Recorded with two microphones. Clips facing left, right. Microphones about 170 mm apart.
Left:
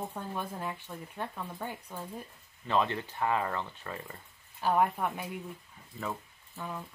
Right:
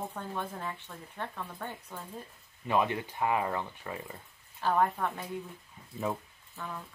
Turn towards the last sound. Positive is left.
turn(degrees=15)  # may be behind; listen again after turning